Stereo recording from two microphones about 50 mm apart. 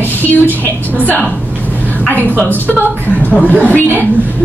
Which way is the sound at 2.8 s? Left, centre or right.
Left.